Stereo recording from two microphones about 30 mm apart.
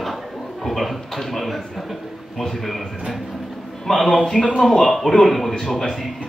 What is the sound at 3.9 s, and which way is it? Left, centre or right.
Speech, centre.